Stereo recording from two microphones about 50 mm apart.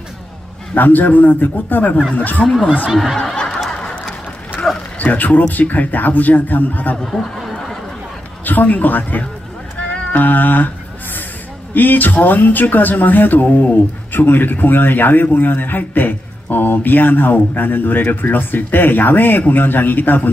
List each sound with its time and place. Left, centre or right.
0.7 s speech: left
3.3 s snicker: centre
3.7 s a sound: left
4.9 s speech: left
7.1 s a sound: centre
8.5 s speech: left
9.8 s music: left
11.7 s speech: left